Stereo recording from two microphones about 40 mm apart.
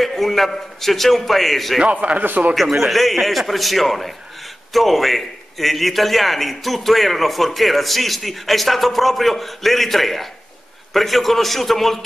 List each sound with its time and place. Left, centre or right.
0.0 s a man's voice: centre
1.9 s a man's voice: right
2.5 s a man's voice: centre